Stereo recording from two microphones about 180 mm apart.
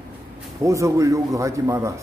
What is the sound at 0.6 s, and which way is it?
Speech, 15° right (ahead or behind).